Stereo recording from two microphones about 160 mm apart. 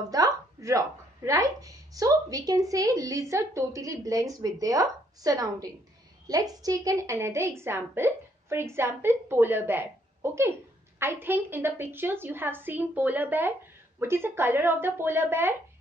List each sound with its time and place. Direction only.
0.1 s a woman's voice: 20° right (ahead or behind)